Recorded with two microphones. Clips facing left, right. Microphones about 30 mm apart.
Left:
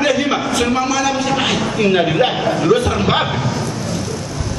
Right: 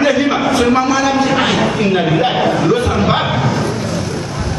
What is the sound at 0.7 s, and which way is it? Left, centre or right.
Speech, right.